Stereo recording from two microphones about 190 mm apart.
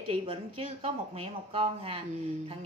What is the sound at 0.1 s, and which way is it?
A woman's voice, 30° right (ahead or behind).